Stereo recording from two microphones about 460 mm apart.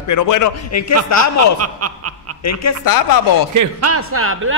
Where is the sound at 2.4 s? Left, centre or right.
Left.